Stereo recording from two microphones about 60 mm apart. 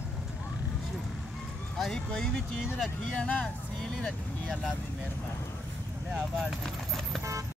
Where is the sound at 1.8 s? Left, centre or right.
Centre.